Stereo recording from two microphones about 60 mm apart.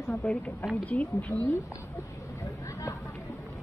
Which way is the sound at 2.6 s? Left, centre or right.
Left.